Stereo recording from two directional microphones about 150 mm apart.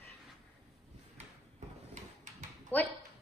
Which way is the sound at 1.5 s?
50° right (ahead or behind).